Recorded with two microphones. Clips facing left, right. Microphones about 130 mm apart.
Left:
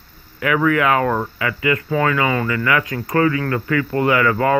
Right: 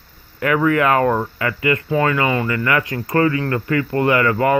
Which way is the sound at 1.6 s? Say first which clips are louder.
Right 1 dB; 25° right (ahead or behind).